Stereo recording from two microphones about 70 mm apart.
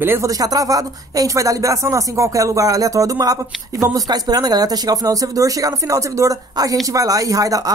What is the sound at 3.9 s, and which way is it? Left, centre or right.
Speech, right.